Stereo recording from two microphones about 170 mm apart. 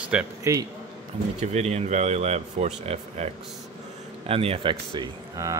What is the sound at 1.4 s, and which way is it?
Speech, 40° right (ahead or behind).